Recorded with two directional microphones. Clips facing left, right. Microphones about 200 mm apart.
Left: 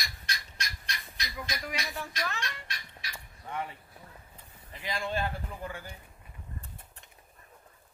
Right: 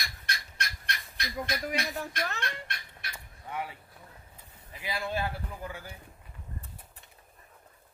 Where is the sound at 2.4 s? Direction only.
55° right (ahead or behind).